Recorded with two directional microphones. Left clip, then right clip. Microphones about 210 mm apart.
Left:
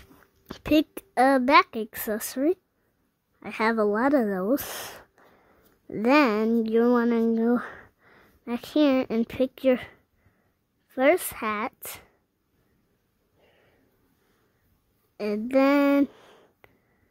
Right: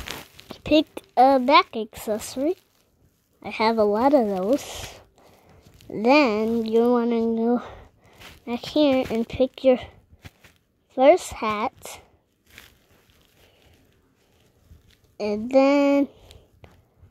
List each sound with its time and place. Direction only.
0.5 s a woman's voice: 25° left (ahead or behind)
5.6 s a woman's voice: 15° left (ahead or behind)
15.1 s a woman's voice: 20° left (ahead or behind)